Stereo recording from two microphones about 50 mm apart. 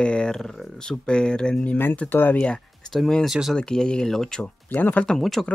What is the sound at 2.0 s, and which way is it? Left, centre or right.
Speech, left.